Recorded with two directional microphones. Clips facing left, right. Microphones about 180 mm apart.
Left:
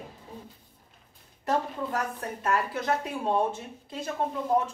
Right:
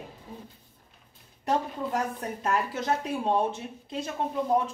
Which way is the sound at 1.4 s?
25° right (ahead or behind).